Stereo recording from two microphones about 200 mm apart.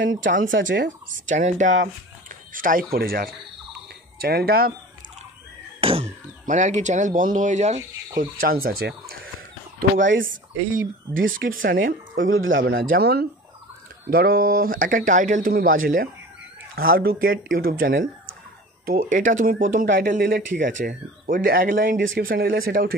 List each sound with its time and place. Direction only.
0.2 s speech: 40° right (ahead or behind)
0.5 s speech: 65° right (ahead or behind)
1.3 s speech: 40° right (ahead or behind)
2.2 s a sound: 40° right (ahead or behind)
2.9 s speech: 50° right (ahead or behind)
5.8 s speech: 30° right (ahead or behind)
8.2 s speech: 45° right (ahead or behind)
11.1 s speech: 75° right (ahead or behind)
11.6 s speech: 45° right (ahead or behind)
12.2 s speech: 75° right (ahead or behind); by 22.9 s 50° right (ahead or behind)